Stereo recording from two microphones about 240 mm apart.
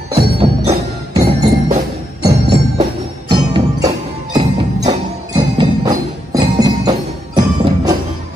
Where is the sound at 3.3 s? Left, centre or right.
Centre.